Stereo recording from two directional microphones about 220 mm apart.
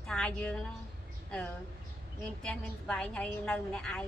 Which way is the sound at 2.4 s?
5° left (ahead or behind).